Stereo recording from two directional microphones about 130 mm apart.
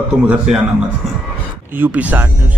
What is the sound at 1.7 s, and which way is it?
Speech, 15° right (ahead or behind).